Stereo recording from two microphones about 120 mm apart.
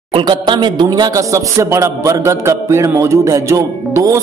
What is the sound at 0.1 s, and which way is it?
Speech, 40° right (ahead or behind).